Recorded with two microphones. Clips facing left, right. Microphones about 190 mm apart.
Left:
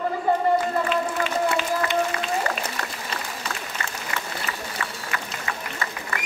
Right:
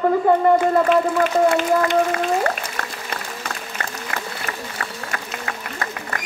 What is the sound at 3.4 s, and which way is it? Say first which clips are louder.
Applause: right 2 dB; 55° right (ahead or behind).